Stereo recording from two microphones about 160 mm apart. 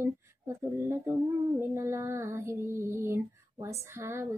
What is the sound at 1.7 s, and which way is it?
Female singing, 15° right (ahead or behind).